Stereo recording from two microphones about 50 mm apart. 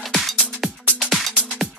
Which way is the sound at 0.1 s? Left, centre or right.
Centre.